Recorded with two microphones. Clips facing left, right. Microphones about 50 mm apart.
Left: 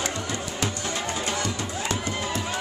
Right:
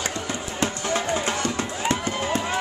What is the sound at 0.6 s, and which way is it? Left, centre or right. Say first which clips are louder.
Music: right 6 dB; right.